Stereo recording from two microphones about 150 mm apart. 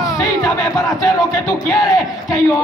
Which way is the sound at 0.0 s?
25° left (ahead or behind).